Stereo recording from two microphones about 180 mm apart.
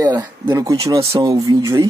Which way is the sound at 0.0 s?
25° right (ahead or behind).